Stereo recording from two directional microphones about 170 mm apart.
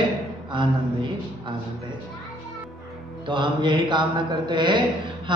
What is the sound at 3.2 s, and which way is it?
A man's voice, 25° right (ahead or behind).